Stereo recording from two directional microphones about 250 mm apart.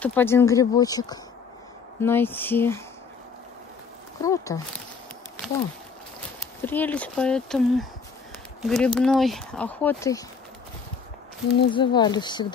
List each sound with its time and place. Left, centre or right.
0.0 s speech: centre
4.2 s speech: centre
6.6 s speech: centre
11.7 s speech: centre